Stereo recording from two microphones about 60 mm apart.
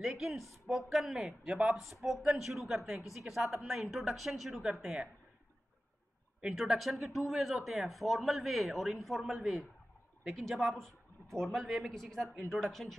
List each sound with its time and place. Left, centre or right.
0.0 s speech: centre
1.8 s speech: centre
4.8 s a woman's voice: centre
6.5 s speech: centre